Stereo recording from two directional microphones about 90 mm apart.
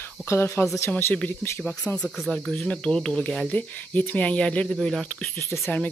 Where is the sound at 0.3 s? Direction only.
30° left (ahead or behind).